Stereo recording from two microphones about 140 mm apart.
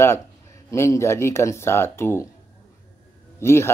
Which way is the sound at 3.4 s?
20° left (ahead or behind).